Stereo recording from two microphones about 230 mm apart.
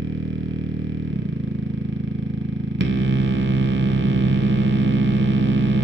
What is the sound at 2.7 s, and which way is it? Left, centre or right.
Music, right.